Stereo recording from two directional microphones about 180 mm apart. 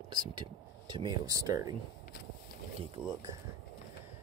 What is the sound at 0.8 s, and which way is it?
Speech, 25° right (ahead or behind).